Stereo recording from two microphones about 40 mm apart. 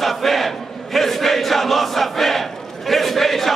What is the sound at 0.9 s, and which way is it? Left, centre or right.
Crowd, centre.